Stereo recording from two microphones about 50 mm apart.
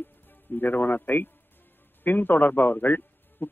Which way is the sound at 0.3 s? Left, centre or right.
Left.